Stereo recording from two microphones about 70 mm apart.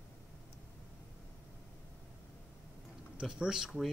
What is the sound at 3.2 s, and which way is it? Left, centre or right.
Speech, centre.